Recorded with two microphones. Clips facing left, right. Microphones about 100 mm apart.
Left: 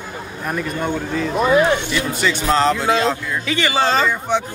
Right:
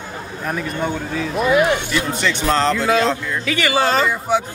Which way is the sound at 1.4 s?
35° left (ahead or behind).